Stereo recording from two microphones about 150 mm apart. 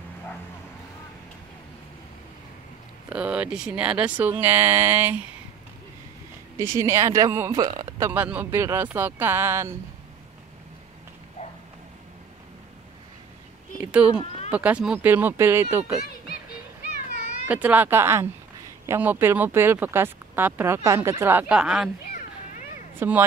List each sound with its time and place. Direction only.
3.1 s speech: 10° right (ahead or behind)
6.6 s speech: 20° right (ahead or behind)
8.1 s speech: 10° right (ahead or behind)
14.5 s speech: 10° right (ahead or behind)
17.5 s speech: 10° right (ahead or behind)
22.0 s a sound: 75° left (ahead or behind)
22.9 s speech: 10° right (ahead or behind)